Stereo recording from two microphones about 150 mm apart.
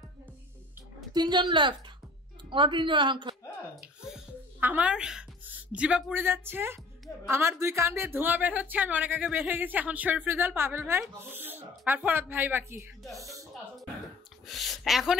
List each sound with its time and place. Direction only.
1.1 s a woman's voice: 30° right (ahead or behind)
4.6 s a woman's voice: 10° right (ahead or behind)
14.5 s a woman's voice: centre (ahead or behind)